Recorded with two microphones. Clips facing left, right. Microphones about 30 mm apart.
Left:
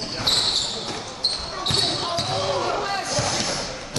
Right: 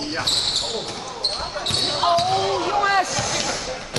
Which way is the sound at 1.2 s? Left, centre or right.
Centre.